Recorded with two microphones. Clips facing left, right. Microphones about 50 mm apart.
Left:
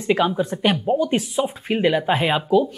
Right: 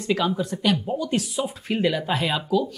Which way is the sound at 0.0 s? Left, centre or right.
Left.